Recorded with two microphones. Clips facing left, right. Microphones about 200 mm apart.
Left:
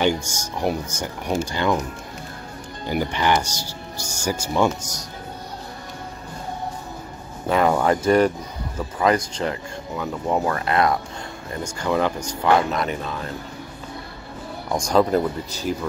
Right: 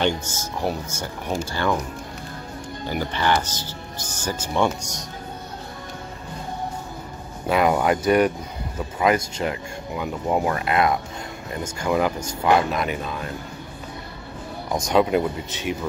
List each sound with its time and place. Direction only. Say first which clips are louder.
0.0 s speech: left 2 dB; 15° left (ahead or behind)
2.9 s speech: left 2 dB; 15° left (ahead or behind)
7.4 s speech: left 1 dB; 10° right (ahead or behind)
14.7 s speech: left 1 dB; 5° right (ahead or behind)